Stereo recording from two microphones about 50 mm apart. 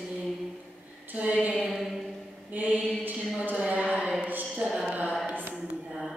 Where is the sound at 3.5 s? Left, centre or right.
Right.